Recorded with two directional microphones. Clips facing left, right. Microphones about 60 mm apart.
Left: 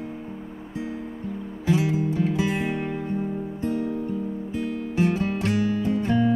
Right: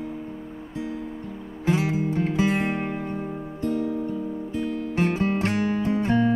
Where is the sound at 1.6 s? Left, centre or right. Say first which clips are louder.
Left 1 dB; right.